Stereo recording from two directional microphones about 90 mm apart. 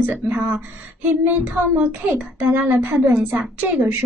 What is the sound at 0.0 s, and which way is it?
A child's voice, 20° right (ahead or behind).